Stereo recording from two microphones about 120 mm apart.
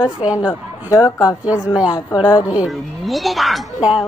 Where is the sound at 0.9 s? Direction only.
30° left (ahead or behind).